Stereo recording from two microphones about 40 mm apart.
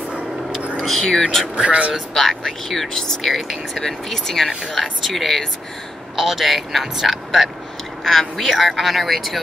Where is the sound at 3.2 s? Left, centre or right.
Centre.